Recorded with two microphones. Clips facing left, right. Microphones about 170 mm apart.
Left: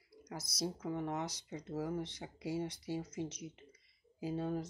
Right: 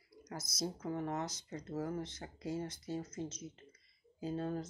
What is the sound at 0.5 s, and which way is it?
Speech, 65° left (ahead or behind).